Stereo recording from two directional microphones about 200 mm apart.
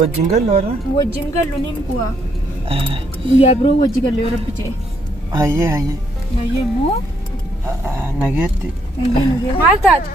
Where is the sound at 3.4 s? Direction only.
30° left (ahead or behind).